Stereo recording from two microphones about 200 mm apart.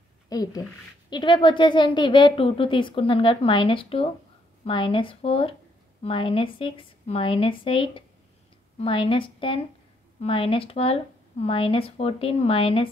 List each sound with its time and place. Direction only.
0.3 s a woman's voice: 20° left (ahead or behind)